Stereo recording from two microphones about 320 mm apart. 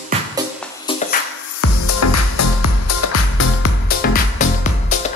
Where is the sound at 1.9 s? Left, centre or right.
Left.